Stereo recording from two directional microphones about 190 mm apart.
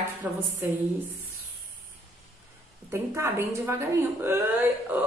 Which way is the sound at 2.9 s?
15° right (ahead or behind).